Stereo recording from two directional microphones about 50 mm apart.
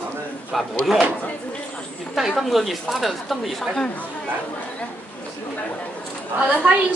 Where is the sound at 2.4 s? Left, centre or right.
Centre.